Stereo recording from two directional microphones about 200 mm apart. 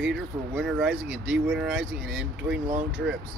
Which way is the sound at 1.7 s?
60° right (ahead or behind).